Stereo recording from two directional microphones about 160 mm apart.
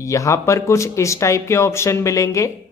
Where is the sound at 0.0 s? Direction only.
20° left (ahead or behind).